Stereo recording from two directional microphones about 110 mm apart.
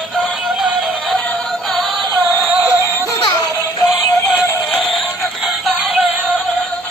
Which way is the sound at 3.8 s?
25° left (ahead or behind).